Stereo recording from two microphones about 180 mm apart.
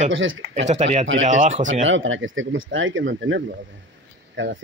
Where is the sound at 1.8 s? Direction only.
90° right.